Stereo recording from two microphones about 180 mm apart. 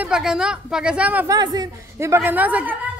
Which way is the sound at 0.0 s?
5° right (ahead or behind).